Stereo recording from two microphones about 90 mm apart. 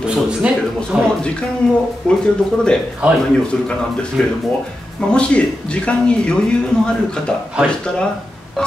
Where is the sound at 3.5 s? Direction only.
5° left (ahead or behind).